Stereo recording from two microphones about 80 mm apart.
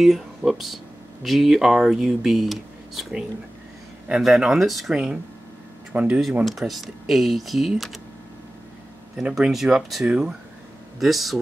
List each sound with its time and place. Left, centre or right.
0.0 s speech: centre
6.4 s speech: centre
9.1 s speech: centre